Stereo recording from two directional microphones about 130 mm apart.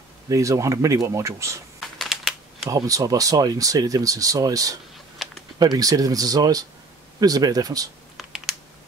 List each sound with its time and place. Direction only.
0.3 s speech: 25° right (ahead or behind)
1.8 s computer keyboard: centre (ahead or behind)
2.7 s speech: 25° right (ahead or behind)
5.2 s typing: centre (ahead or behind)
5.6 s speech: 30° right (ahead or behind)
8.2 s typing: centre (ahead or behind)